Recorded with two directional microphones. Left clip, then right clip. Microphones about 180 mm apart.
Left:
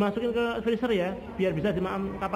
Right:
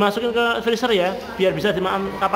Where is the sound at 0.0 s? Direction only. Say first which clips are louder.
Right 8 dB; 30° right (ahead or behind).